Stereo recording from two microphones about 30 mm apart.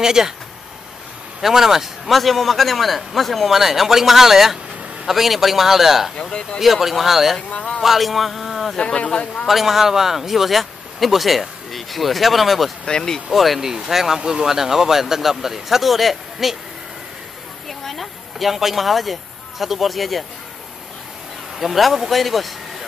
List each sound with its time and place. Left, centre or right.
0.0 s speech: centre
1.4 s speech: centre
2.0 s speech: centre
3.5 s a man's voice: centre
8.8 s a man's voice: left
9.5 s speech: centre
12.8 s speech: left
13.3 s speech: centre
13.6 s speech: centre
17.6 s a sound: centre
18.4 s speech: centre
21.5 s speech: centre